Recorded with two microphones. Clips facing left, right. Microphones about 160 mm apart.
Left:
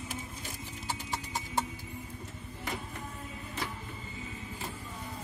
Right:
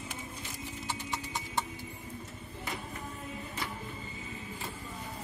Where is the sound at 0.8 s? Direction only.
40° left (ahead or behind).